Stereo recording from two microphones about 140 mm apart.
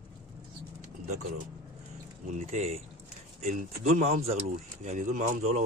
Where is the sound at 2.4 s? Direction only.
50° right (ahead or behind).